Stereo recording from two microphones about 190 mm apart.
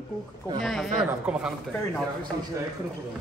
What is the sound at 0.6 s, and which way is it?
Speech, centre (ahead or behind).